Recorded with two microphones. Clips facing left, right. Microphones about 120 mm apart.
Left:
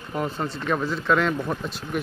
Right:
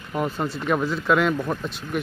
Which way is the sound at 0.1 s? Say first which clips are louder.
Right 2 dB; 5° right (ahead or behind).